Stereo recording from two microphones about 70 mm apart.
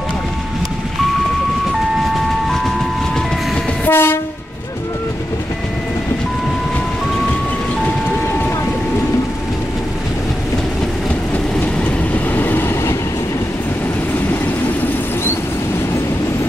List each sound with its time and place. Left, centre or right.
3.8 s train: left
11.3 s train: left